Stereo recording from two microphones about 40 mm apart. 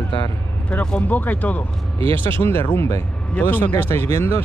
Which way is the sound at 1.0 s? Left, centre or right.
Left.